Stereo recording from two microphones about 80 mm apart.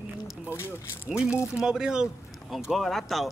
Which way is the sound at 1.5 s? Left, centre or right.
Centre.